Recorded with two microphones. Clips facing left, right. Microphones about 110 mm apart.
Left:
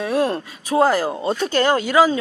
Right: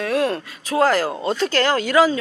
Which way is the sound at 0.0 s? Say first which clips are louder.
Left 1 dB; 25° left (ahead or behind).